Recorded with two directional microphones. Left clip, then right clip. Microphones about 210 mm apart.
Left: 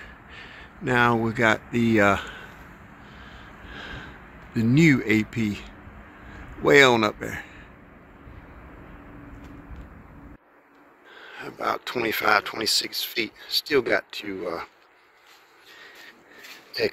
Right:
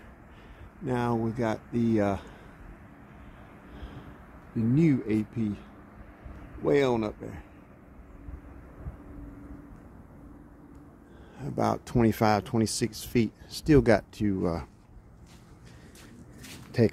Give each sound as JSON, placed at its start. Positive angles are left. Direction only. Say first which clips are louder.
{"t": 0.8, "sound": "speech", "louder": "left 9 dB", "side_deg": 0}
{"t": 4.6, "sound": "speech", "louder": "left 6 dB", "side_deg": 0}
{"t": 11.3, "sound": "speech", "louder": "left 1 dB", "side_deg": -10}